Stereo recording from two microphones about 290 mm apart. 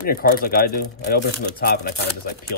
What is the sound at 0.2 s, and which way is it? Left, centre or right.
Speech, left.